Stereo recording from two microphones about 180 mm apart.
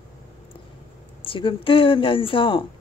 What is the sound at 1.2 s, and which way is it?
A woman's voice, 30° left (ahead or behind).